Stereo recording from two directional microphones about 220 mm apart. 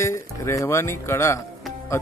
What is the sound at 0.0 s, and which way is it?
Speech, 15° left (ahead or behind).